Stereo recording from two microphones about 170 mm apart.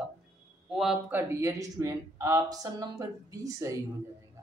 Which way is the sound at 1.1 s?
15° right (ahead or behind).